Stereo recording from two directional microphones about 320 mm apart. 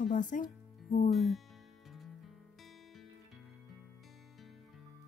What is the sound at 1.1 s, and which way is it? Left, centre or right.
Speech, centre.